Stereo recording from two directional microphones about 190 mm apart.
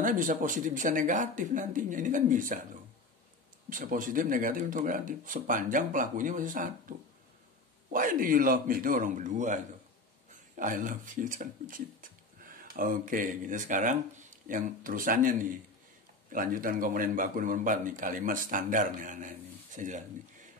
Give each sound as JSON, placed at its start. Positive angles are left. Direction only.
{"t": 0.0, "sound": "a man's voice", "side_deg": -45}
{"t": 3.7, "sound": "a man's voice", "side_deg": -45}